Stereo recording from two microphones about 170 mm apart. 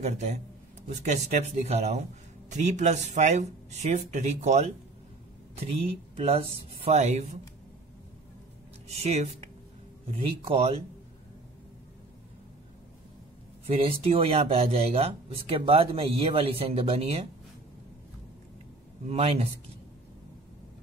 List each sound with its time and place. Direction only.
0.0 s speech: 40° right (ahead or behind)
6.1 s speech: 35° right (ahead or behind)
8.8 s speech: 40° right (ahead or behind)
13.7 s speech: 35° right (ahead or behind)
19.0 s speech: 35° right (ahead or behind)